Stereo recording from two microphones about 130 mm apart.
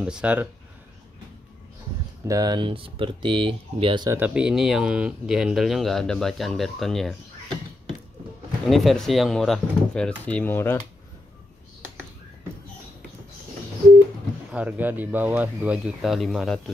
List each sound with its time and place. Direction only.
0.0 s speech: 10° right (ahead or behind)
2.2 s speech: 30° right (ahead or behind)
4.1 s speech: 10° right (ahead or behind)
8.6 s speech: centre (ahead or behind)
14.5 s speech: 10° right (ahead or behind)